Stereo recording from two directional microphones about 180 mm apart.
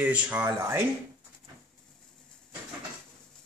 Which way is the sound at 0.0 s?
10° right (ahead or behind).